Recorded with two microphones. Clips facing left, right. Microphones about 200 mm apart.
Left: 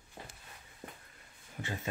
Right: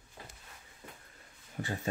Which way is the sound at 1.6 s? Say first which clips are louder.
Right 4 dB; 40° right (ahead or behind).